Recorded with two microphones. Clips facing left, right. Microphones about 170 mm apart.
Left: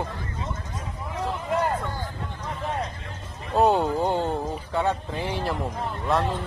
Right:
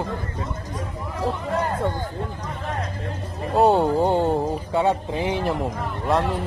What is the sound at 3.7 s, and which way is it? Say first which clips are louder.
A man's voice: right 4 dB; 15° right (ahead or behind).